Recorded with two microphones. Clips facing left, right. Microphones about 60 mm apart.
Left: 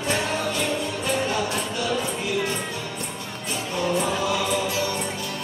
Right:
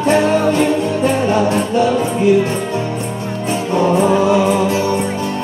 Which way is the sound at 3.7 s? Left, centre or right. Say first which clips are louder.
Right 11 dB; right.